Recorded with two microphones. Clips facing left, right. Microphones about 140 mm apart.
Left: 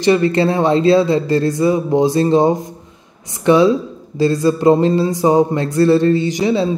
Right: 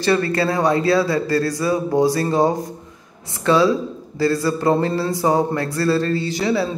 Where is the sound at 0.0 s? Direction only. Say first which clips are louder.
Left 5 dB; 20° left (ahead or behind).